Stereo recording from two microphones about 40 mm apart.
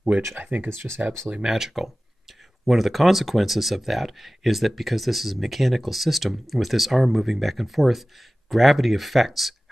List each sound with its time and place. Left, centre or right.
0.4 s speech: right
1.4 s speech: centre